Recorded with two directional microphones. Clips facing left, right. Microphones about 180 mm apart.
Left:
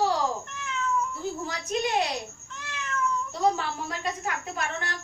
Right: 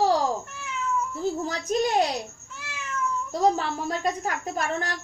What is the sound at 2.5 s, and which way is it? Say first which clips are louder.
Cat: left 1 dB; 5° right (ahead or behind).